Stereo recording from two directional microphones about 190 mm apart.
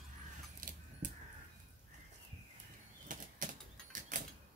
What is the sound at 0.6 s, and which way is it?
Caw, 45° right (ahead or behind).